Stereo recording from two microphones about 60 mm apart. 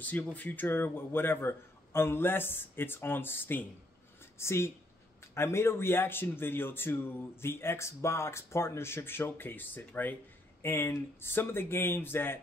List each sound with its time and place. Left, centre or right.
0.0 s a man's voice: left
4.4 s speech: left
10.6 s a man's voice: left